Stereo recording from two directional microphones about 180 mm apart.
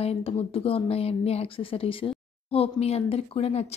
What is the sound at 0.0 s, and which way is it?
A woman's voice, 35° left (ahead or behind).